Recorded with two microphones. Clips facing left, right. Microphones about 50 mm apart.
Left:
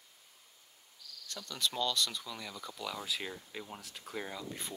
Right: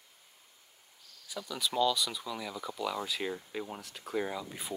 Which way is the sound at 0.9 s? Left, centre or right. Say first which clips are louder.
Left 6 dB; right.